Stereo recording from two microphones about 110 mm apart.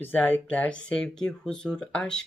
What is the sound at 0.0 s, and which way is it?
Speech, 15° left (ahead or behind).